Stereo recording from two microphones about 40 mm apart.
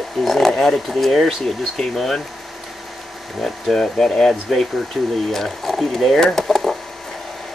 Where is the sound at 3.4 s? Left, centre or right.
Centre.